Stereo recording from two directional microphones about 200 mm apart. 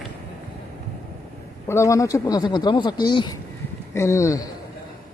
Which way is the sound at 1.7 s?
15° left (ahead or behind).